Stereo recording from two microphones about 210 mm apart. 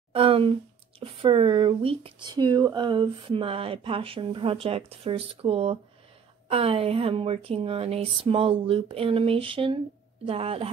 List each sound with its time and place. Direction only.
0.1 s speech: 25° right (ahead or behind)